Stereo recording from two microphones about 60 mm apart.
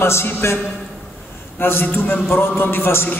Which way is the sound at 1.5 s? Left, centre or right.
Left.